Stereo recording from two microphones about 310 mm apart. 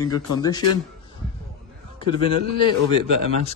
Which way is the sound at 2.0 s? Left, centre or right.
Centre.